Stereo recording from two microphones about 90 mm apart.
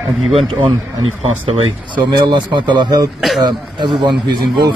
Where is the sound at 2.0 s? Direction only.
50° right (ahead or behind).